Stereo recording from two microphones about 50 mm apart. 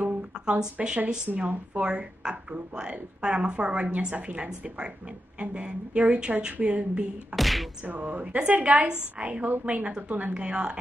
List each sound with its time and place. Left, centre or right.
0.7 s a woman's voice: right
7.3 s speech: centre
7.8 s a woman's voice: right
10.3 s a woman's voice: centre